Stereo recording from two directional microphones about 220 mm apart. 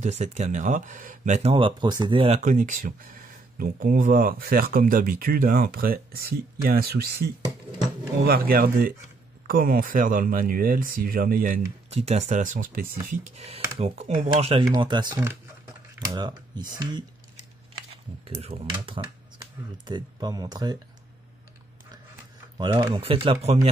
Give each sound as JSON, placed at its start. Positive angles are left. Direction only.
{"t": 0.0, "sound": "speech", "side_deg": -30}
{"t": 18.2, "sound": "speech", "side_deg": -30}
{"t": 22.6, "sound": "speech", "side_deg": -20}